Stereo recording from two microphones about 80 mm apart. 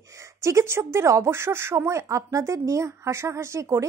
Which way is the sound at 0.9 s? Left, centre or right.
Right.